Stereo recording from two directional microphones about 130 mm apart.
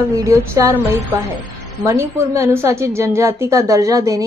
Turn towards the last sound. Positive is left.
turn(degrees=-25)  # may be behind; listen again after turning